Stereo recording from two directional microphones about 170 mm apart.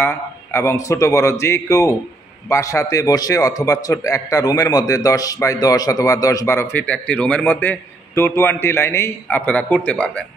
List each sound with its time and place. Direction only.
0.0 s a man's voice: 15° left (ahead or behind)